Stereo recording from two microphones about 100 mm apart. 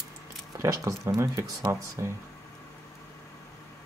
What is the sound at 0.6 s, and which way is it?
Speech, 30° right (ahead or behind).